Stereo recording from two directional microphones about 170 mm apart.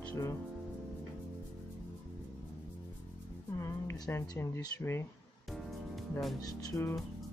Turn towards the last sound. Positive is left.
turn(degrees=20)  # may be behind; listen again after turning